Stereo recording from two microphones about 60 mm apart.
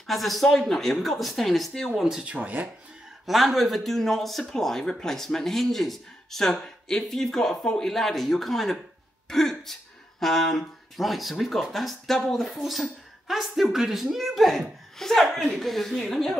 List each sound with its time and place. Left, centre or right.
0.0 s speech: centre
2.0 s speech: centre
2.2 s speech: right
3.3 s speech: centre